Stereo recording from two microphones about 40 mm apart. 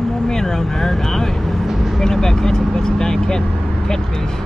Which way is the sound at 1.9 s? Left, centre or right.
Centre.